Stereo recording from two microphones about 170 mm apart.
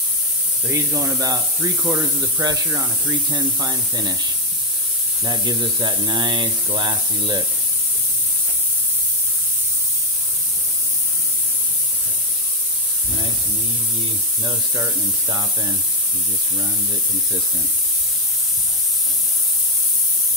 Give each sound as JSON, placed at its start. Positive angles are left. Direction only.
{"t": 0.7, "sound": "speech", "side_deg": -15}
{"t": 5.2, "sound": "speech", "side_deg": -25}
{"t": 14.4, "sound": "speech", "side_deg": -20}